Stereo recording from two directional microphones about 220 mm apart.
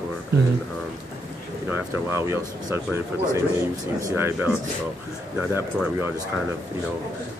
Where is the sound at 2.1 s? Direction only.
10° right (ahead or behind).